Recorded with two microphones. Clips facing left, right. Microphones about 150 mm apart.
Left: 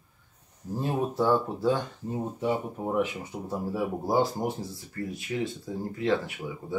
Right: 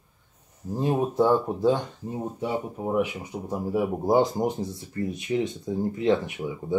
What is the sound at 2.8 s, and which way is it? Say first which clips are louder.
Speech: right 2 dB; 15° right (ahead or behind).